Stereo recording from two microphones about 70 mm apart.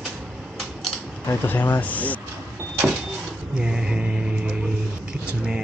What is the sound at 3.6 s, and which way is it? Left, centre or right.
Music, centre.